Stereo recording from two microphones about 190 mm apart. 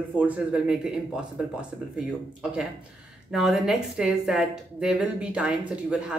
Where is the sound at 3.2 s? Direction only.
Centre (ahead or behind).